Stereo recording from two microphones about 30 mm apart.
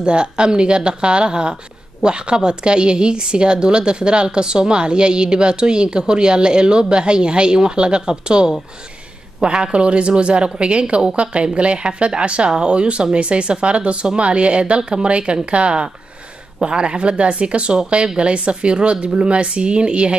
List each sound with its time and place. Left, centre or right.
0.0 s a woman's voice: right